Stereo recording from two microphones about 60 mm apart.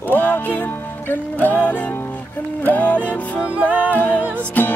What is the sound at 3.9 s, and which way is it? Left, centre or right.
Music, left.